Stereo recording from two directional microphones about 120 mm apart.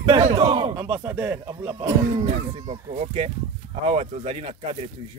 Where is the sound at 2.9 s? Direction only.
65° right (ahead or behind).